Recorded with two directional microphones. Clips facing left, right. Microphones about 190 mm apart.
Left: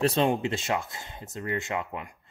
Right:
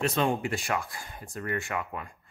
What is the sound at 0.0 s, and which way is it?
Speech, 30° left (ahead or behind).